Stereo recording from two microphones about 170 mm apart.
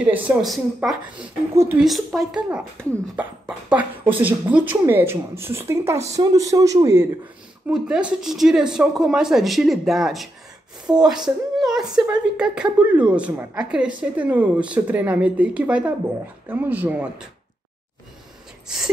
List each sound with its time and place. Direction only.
0.0 s a woman's voice: 10° right (ahead or behind)
1.9 s a woman's voice: centre (ahead or behind); by 7.1 s 20° right (ahead or behind)
7.6 s speech: 5° right (ahead or behind)
11.2 s a sound: 5° right (ahead or behind)
12.1 s a woman's voice: 5° right (ahead or behind)